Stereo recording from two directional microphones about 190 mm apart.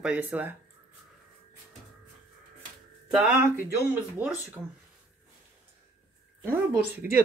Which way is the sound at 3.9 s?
10° right (ahead or behind).